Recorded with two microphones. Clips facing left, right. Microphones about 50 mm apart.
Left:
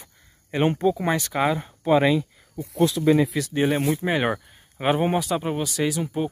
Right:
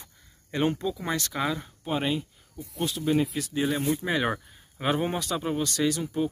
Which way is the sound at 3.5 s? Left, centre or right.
Left.